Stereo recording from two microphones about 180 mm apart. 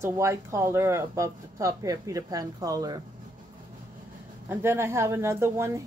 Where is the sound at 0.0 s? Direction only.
15° right (ahead or behind).